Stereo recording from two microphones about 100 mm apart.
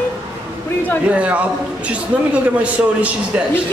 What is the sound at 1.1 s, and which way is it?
A man's voice, 15° right (ahead or behind).